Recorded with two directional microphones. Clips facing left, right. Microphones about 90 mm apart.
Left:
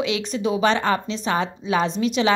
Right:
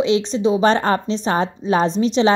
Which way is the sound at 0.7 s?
40° right (ahead or behind).